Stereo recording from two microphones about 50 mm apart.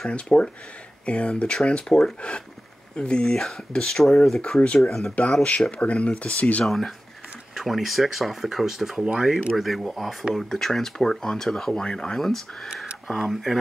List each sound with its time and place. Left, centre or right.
0.1 s speech: left
3.0 s speech: centre
4.7 s speech: centre
5.7 s speech: left
6.6 s speech: centre
12.2 s speech: centre